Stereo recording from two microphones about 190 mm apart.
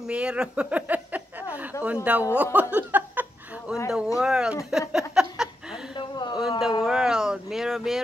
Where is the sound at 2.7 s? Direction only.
10° right (ahead or behind).